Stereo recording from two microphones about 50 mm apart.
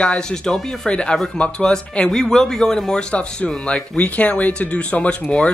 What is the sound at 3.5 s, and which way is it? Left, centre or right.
Speech, left.